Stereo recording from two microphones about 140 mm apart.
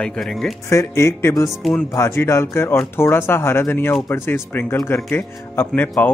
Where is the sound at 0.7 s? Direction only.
20° left (ahead or behind).